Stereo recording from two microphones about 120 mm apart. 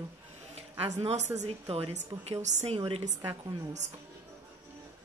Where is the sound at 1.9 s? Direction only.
75° right (ahead or behind).